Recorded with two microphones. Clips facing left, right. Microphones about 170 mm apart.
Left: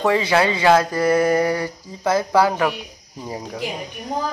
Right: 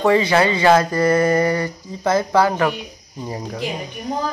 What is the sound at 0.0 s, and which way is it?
Speech, 5° left (ahead or behind).